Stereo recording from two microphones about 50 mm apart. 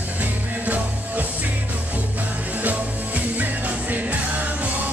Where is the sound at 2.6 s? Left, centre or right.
Right.